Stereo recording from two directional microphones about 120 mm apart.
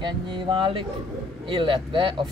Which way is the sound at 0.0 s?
40° right (ahead or behind).